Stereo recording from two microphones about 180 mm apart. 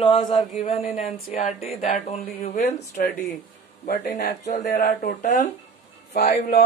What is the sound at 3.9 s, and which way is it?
Speech, 50° left (ahead or behind).